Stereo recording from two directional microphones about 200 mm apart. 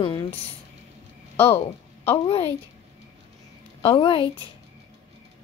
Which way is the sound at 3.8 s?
25° left (ahead or behind).